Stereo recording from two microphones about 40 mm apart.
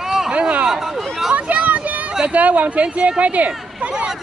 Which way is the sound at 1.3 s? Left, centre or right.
Right.